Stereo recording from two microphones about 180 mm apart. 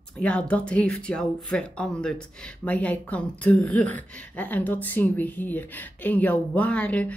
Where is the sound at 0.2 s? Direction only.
5° left (ahead or behind).